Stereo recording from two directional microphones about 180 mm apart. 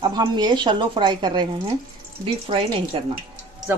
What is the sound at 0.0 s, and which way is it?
A woman's voice, 25° right (ahead or behind).